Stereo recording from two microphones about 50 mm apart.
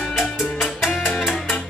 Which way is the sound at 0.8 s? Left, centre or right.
Centre.